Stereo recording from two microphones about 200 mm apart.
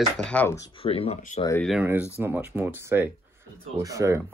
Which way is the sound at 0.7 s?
30° left (ahead or behind).